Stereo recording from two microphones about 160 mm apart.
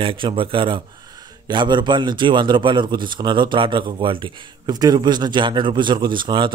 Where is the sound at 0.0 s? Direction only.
35° right (ahead or behind).